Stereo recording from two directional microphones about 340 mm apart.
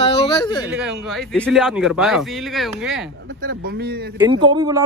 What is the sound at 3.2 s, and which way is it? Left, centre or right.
Speech, right.